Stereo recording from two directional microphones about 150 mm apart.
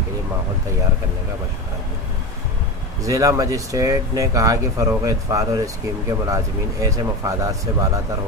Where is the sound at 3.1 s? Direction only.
20° right (ahead or behind).